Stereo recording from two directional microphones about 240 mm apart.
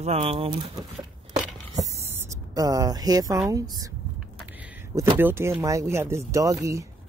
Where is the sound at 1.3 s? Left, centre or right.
Centre.